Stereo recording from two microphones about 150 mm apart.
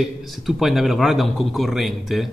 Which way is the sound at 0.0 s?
Centre (ahead or behind).